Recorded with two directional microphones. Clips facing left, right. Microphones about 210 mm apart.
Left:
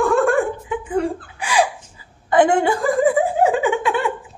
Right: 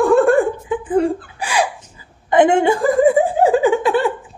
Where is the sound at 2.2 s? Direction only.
20° right (ahead or behind).